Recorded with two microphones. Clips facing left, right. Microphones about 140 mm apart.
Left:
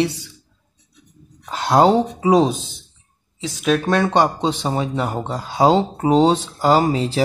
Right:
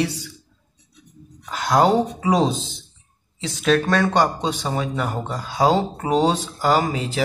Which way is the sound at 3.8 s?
20° left (ahead or behind).